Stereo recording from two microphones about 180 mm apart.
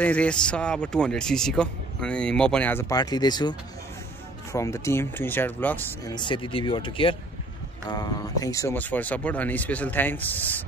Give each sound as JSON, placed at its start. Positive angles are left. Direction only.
{"t": 0.0, "sound": "speech", "side_deg": 5}
{"t": 6.0, "sound": "speech", "side_deg": 25}